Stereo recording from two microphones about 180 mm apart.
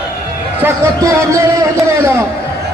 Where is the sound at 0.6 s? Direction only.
15° right (ahead or behind).